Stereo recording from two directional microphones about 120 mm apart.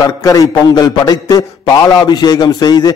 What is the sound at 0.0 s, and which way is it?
A man's voice, 30° left (ahead or behind).